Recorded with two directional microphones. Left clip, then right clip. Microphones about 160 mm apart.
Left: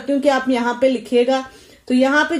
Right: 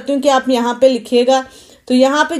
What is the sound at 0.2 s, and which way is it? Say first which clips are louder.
A woman's voice: right 5 dB; 25° right (ahead or behind).